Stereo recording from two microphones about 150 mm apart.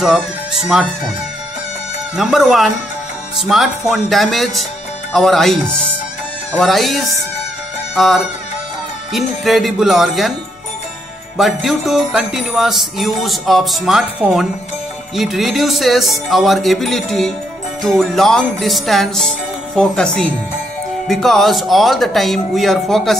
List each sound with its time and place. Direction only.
0.0 s music: centre (ahead or behind)
2.1 s music: centre (ahead or behind)
7.9 s speech: centre (ahead or behind)
9.1 s music: centre (ahead or behind)
11.3 s music: centre (ahead or behind)